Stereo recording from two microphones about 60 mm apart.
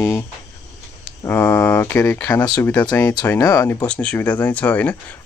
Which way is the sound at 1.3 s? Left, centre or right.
Left.